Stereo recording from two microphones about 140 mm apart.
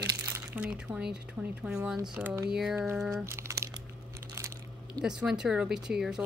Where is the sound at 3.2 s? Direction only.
20° right (ahead or behind).